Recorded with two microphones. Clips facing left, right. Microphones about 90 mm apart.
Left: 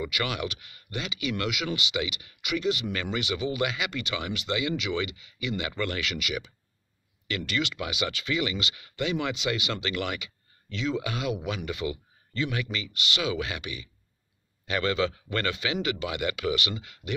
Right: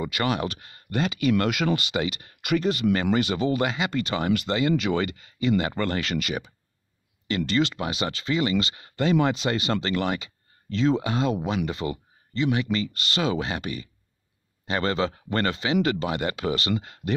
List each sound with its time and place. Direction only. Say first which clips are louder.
0.0 s speech: right 5 dB; 35° right (ahead or behind)
12.7 s speech: right 5 dB; 40° right (ahead or behind)